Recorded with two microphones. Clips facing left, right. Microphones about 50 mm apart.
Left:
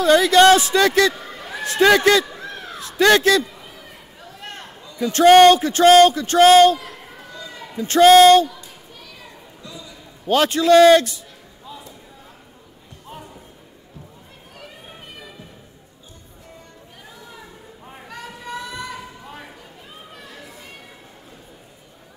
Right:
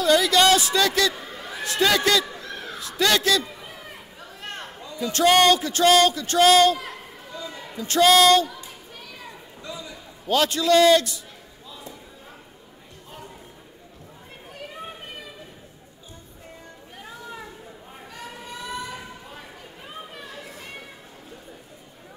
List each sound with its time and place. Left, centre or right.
0.0 s speech: left
5.0 s speech: left
7.9 s speech: left
10.2 s speech: left